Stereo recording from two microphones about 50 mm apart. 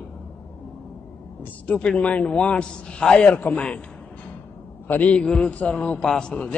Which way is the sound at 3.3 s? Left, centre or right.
Left.